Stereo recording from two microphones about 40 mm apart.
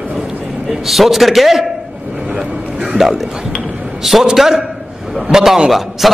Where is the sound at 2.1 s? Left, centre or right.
Centre.